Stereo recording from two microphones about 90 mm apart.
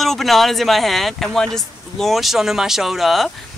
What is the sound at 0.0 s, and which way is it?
Speech, centre (ahead or behind).